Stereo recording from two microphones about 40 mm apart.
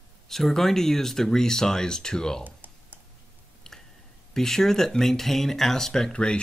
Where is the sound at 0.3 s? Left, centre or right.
Centre.